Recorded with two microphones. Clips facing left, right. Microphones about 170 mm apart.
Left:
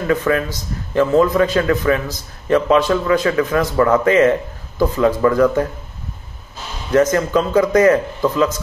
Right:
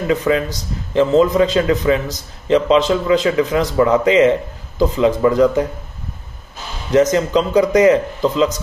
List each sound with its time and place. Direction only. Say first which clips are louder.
0.0 s a man's voice: right 1 dB; 20° right (ahead or behind)
6.9 s a man's voice: right 1 dB; 20° right (ahead or behind)